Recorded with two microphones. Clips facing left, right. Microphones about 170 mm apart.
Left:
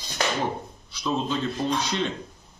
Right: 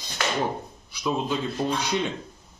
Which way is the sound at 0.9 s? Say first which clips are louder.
Even; 10° right (ahead or behind).